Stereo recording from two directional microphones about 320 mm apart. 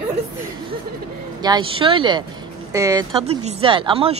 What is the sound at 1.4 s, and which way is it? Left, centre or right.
Speech, centre.